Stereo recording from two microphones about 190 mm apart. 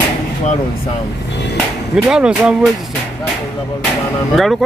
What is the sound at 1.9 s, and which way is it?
Speech, 5° right (ahead or behind).